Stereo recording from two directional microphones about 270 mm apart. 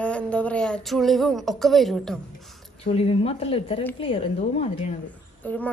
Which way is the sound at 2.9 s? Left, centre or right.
Left.